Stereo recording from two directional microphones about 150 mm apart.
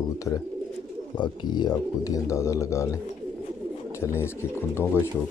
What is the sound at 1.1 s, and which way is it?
Speech, 30° left (ahead or behind).